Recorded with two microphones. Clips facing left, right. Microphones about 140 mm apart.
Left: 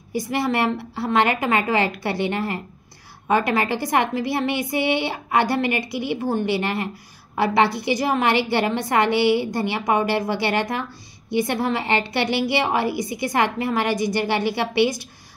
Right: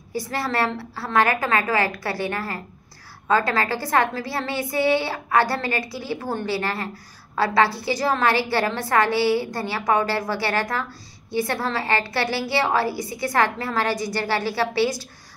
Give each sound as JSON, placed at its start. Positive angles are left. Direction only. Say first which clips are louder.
{"t": 0.1, "sound": "a woman's voice", "louder": "left 3 dB", "side_deg": 15}